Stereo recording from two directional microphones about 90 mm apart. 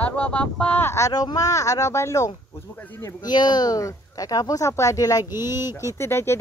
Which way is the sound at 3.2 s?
50° left (ahead or behind).